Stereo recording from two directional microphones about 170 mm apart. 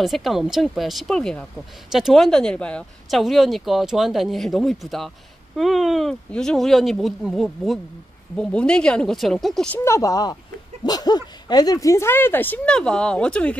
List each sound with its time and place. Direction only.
0.0 s speech: centre (ahead or behind)
9.8 s speech: 20° left (ahead or behind)